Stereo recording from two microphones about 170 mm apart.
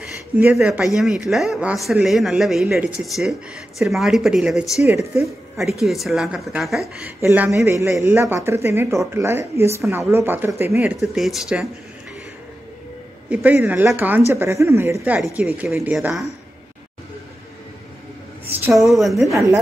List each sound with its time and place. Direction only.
0.0 s speech: 5° right (ahead or behind)
7.0 s speech: 10° right (ahead or behind)
11.0 s speech: centre (ahead or behind)
13.3 s speech: 10° right (ahead or behind)
18.7 s speech: centre (ahead or behind)
19.3 s speech: 20° right (ahead or behind)